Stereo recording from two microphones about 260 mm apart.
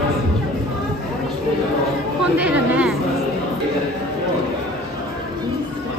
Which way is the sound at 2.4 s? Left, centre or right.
Centre.